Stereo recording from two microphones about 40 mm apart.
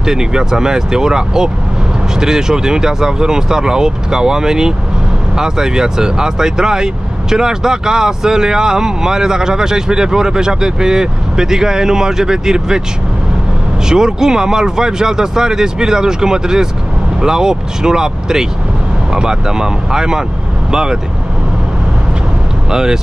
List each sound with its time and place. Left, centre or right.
0.0 s speech: centre
13.8 s speech: centre
22.7 s speech: centre